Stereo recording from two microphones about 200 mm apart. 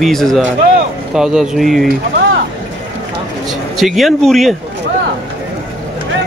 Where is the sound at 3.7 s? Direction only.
Centre (ahead or behind).